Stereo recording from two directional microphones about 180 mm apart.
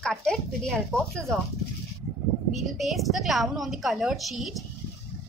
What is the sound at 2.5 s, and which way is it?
A woman's voice, centre (ahead or behind).